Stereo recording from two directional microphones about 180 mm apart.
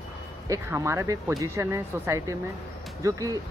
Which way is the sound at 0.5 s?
15° right (ahead or behind).